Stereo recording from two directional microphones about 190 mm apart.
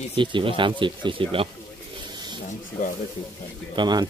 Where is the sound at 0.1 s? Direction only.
25° right (ahead or behind).